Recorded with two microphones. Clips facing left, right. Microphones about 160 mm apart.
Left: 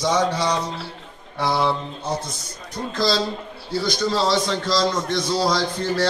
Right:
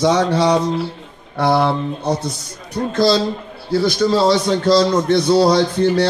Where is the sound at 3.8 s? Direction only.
60° right (ahead or behind).